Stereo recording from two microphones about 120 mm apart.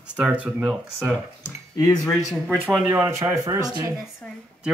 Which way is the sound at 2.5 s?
15° right (ahead or behind).